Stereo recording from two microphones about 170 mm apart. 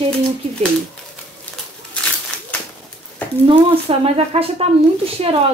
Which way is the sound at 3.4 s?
35° right (ahead or behind).